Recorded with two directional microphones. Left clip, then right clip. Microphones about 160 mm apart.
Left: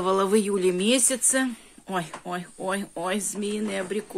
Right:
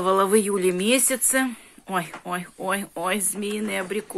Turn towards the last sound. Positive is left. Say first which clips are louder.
# right 2 dB
turn(degrees=0)  # may be behind; listen again after turning